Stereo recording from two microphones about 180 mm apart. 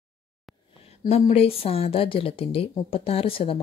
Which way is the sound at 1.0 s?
35° left (ahead or behind).